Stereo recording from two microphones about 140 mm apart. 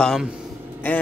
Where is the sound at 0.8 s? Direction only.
15° left (ahead or behind).